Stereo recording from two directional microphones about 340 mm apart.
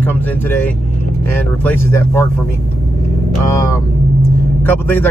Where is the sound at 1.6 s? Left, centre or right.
Centre.